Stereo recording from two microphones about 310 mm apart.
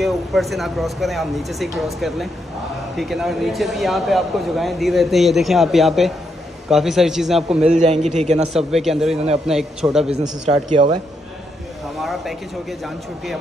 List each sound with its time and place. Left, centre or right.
0.0 s speech: centre
7.8 s a man's voice: right
8.5 s speech: centre
10.1 s speech: centre
12.0 s speech: centre